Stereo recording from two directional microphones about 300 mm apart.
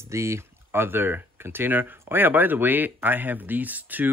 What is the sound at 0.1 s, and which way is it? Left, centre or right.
Speech, centre.